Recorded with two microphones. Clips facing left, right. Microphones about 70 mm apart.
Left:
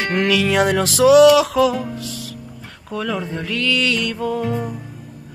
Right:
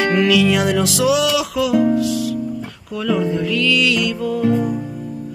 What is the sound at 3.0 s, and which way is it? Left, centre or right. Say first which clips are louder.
Music: right 6 dB; left.